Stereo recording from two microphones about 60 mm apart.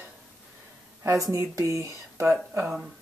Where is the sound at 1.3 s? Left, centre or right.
Right.